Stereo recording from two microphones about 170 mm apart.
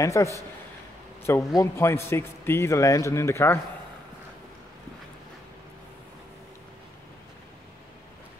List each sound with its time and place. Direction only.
0.0 s a man's voice: 15° left (ahead or behind)